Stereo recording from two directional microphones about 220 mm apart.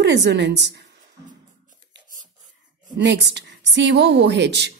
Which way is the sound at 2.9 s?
55° right (ahead or behind).